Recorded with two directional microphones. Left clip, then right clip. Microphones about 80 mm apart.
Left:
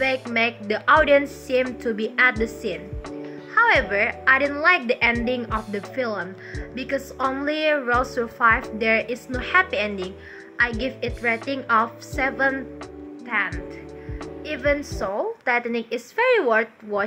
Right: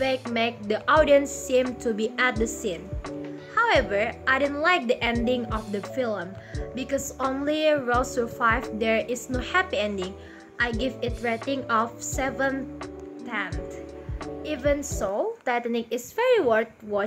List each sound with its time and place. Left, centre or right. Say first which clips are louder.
0.0 s a woman's voice: left 3 dB; right
6.7 s a woman's voice: left 2 dB; right